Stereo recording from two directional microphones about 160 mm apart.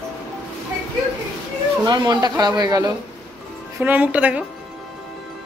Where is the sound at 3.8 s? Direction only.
10° right (ahead or behind).